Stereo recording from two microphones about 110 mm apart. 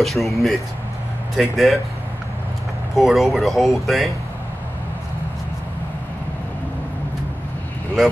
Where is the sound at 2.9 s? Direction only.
Centre (ahead or behind).